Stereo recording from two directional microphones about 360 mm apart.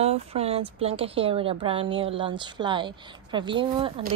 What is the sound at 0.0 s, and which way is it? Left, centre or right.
A woman's voice, centre.